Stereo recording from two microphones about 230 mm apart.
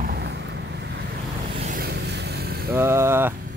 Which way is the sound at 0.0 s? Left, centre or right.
Right.